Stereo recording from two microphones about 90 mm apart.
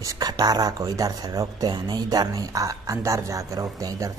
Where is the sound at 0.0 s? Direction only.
40° right (ahead or behind).